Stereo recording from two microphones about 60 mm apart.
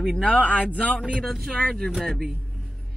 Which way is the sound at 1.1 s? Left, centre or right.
Centre.